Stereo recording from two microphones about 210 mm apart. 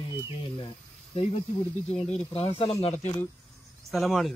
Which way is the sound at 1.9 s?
30° left (ahead or behind).